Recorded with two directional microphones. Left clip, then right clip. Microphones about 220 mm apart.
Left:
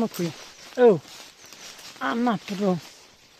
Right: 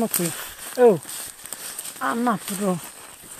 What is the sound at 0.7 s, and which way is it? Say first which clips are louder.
Speech: right 1 dB; 20° left (ahead or behind).